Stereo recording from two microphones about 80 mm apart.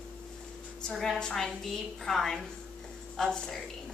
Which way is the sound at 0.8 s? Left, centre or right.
Centre.